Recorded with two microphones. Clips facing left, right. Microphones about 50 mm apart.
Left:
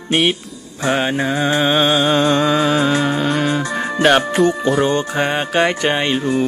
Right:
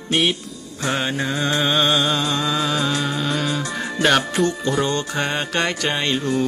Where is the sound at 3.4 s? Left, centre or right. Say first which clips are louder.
Left 5 dB; left.